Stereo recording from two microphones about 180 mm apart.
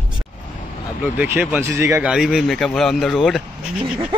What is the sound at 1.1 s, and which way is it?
Speech, 10° right (ahead or behind).